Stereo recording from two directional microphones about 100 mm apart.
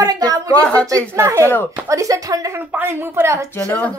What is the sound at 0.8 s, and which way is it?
A woman's voice, 30° right (ahead or behind).